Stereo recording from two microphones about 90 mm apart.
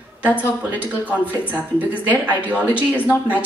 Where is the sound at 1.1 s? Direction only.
15° right (ahead or behind).